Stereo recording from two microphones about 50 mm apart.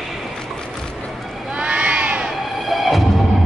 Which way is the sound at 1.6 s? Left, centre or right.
Right.